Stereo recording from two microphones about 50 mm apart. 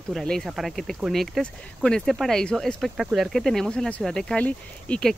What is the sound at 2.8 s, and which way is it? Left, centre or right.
Speech, centre.